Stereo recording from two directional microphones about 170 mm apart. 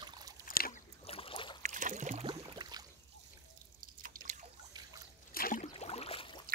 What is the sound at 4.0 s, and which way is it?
Drip, 55° right (ahead or behind).